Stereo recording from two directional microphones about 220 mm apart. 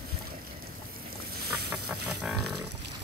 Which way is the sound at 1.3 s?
45° right (ahead or behind).